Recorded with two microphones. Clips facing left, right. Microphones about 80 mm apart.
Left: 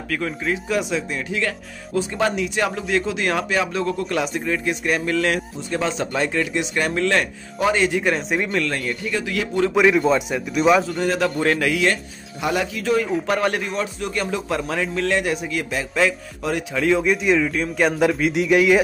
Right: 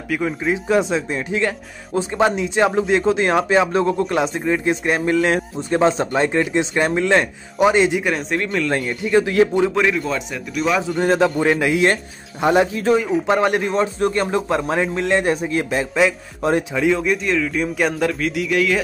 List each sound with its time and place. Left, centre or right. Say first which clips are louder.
0.1 s speech: right 4 dB; centre
0.7 s speech: right 7 dB; right
8.0 s speech: even; centre
9.1 s speech: right 12 dB; right
9.8 s speech: left 3 dB; centre
11.2 s speech: right 3 dB; centre
11.6 s speech: right 3 dB; right
12.9 s speech: right 2 dB; centre
13.3 s speech: right 5 dB; right
13.7 s speech: right 7 dB; right; by 16.2 s centre
16.7 s speech: right 1 dB; centre
18.3 s speech: left 3 dB; left